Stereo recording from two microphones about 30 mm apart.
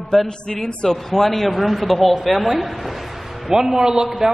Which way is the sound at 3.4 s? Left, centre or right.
Centre.